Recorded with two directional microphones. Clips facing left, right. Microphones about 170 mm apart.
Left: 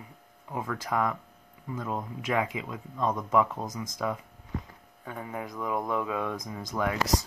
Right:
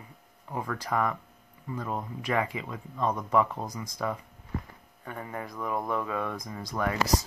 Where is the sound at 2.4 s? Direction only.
10° left (ahead or behind).